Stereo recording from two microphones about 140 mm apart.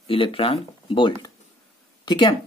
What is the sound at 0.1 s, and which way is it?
Speech, 40° left (ahead or behind).